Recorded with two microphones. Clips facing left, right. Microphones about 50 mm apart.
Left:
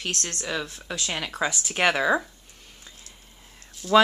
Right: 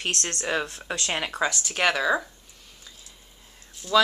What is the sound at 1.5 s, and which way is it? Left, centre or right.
Speech, centre.